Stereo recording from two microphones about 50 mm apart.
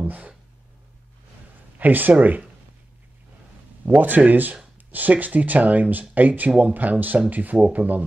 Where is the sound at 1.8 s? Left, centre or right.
Right.